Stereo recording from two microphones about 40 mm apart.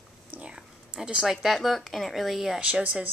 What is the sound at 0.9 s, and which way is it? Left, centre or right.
Speech, right.